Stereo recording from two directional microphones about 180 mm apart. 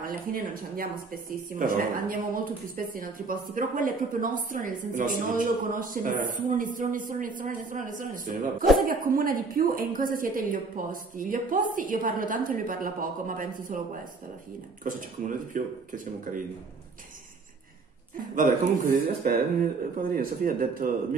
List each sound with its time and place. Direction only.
0.0 s speech: 50° right (ahead or behind)
14.8 s speech: 45° right (ahead or behind)
18.3 s speech: 50° right (ahead or behind)